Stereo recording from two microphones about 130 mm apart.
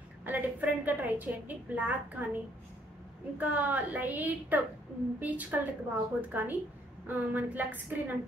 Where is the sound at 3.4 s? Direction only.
15° right (ahead or behind).